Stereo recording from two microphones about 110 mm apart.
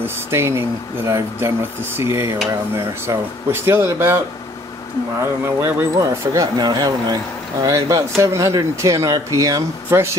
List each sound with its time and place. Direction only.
0.0 s speech: 20° right (ahead or behind)
5.2 s speech: 25° right (ahead or behind)